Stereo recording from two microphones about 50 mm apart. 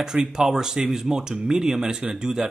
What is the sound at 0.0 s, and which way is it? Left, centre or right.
Speech, centre.